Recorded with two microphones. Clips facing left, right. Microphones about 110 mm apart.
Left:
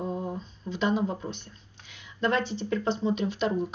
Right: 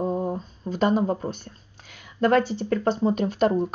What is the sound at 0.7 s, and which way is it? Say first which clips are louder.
Speech: right 5 dB; 45° right (ahead or behind).